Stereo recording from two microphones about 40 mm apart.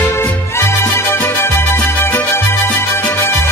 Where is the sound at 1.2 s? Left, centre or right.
Left.